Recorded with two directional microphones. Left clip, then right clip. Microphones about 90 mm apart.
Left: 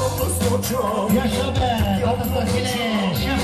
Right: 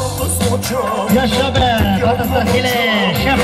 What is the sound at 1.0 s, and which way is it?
Music, 20° right (ahead or behind).